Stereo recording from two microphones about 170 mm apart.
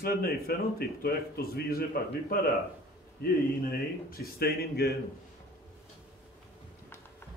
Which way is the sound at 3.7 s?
60° left (ahead or behind).